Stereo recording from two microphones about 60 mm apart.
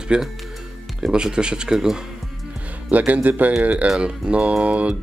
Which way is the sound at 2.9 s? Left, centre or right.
Right.